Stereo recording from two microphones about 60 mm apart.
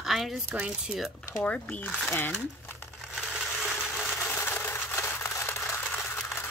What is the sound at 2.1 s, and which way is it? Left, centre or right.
Speech, left.